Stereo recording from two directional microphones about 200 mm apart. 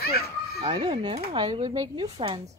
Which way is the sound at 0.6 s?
20° right (ahead or behind).